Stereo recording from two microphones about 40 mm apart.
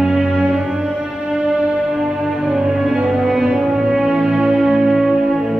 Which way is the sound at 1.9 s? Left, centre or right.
Centre.